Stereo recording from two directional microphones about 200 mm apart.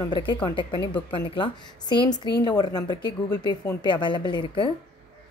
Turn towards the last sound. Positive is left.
turn(degrees=25)  # may be behind; listen again after turning